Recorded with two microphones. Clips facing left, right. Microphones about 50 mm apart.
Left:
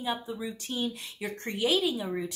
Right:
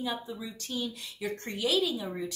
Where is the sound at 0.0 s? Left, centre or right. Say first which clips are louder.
Left 2 dB; left.